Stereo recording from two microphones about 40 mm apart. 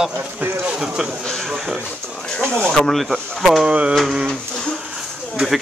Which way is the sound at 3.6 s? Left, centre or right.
Right.